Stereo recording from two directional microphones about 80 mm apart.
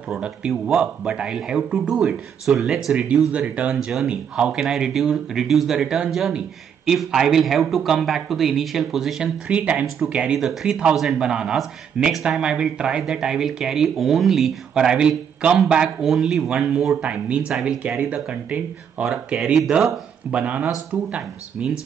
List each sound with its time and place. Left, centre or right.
0.1 s speech: centre
3.3 s speech: centre
3.7 s speech: centre
9.5 s speech: centre
19.0 s speech: centre
20.2 s speech: centre